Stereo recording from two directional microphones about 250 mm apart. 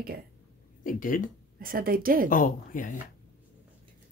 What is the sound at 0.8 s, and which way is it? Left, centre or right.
Speech, left.